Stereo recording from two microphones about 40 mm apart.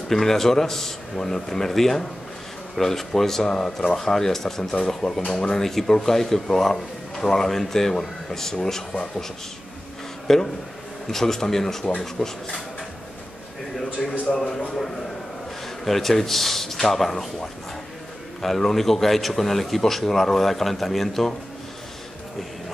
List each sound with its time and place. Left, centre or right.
0.1 s speech: centre
10.2 s speech: centre
14.2 s a man's voice: left
15.8 s a man's voice: centre